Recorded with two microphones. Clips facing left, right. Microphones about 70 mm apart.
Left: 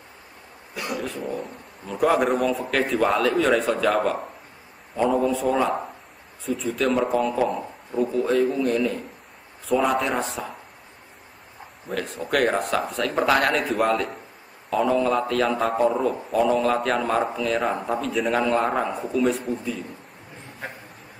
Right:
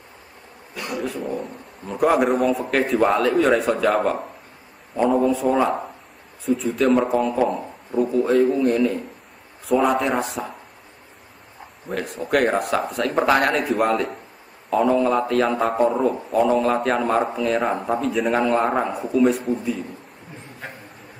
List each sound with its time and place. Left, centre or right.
0.7 s a man's voice: centre
9.7 s a man's voice: centre
11.9 s a man's voice: centre
19.5 s a man's voice: centre